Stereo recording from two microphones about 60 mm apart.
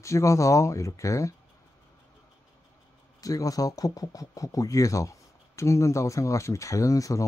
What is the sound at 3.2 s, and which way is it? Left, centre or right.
Speech, left.